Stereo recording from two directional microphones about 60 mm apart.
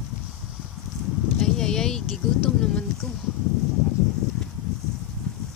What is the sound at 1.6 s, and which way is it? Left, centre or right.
Speech, centre.